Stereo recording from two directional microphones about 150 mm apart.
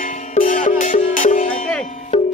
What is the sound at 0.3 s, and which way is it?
Music, 60° left (ahead or behind).